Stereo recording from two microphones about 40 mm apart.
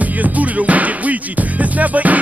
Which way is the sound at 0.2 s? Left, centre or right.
Right.